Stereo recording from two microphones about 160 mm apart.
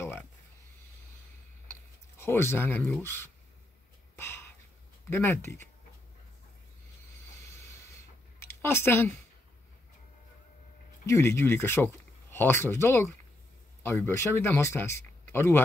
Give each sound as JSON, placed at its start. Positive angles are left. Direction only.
{"t": 2.1, "sound": "speech", "side_deg": 15}
{"t": 5.1, "sound": "speech", "side_deg": 15}
{"t": 8.4, "sound": "speech", "side_deg": 15}
{"t": 11.1, "sound": "speech", "side_deg": 15}